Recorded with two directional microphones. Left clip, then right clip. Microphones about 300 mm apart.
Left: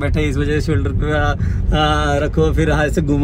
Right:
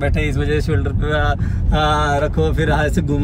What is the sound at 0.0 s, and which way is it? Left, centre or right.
A man's voice, centre.